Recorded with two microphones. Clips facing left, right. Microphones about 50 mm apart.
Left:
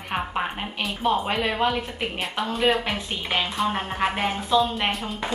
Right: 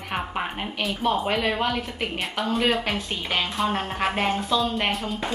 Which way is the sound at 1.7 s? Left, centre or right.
Centre.